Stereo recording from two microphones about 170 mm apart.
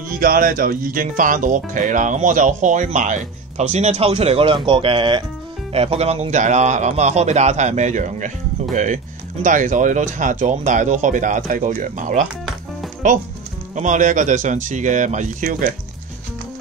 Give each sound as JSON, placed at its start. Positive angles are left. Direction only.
{"t": 0.2, "sound": "speech", "side_deg": -55}
{"t": 13.7, "sound": "speech", "side_deg": -45}